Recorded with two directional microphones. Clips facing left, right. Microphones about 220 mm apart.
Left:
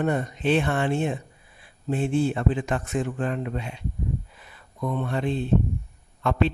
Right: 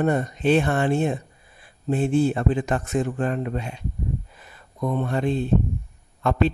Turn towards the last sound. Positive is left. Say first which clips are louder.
# right 2 dB
turn(degrees=-40)  # may be behind; listen again after turning